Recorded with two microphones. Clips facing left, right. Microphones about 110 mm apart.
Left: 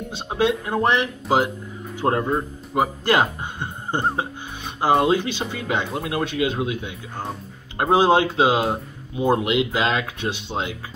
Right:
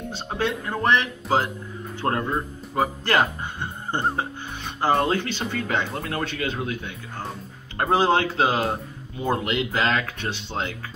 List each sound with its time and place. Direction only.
0.1 s speech: 15° left (ahead or behind)